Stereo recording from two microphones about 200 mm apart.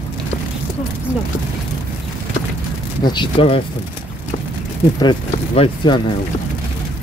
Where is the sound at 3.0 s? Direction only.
20° left (ahead or behind).